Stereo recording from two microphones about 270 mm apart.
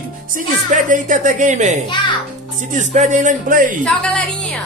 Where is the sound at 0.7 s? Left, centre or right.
Right.